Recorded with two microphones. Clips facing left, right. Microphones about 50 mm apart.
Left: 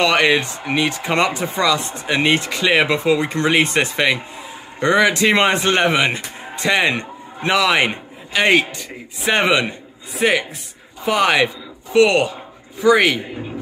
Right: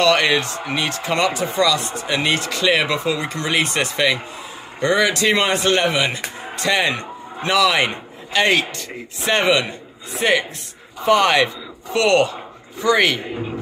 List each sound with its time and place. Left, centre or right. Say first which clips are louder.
0.0 s speech: left 1 dB; centre
10.1 s speech: left 1 dB; centre